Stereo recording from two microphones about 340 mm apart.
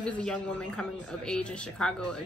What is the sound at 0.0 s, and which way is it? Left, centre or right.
Speech, centre.